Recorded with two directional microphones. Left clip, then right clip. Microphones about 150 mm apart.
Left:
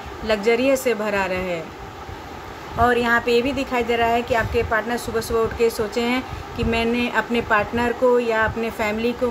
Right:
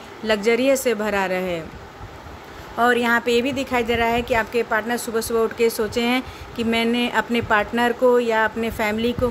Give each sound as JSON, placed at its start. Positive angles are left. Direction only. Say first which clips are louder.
{"t": 0.3, "sound": "speech", "louder": "even", "side_deg": -45}
{"t": 2.8, "sound": "speech", "louder": "even", "side_deg": -45}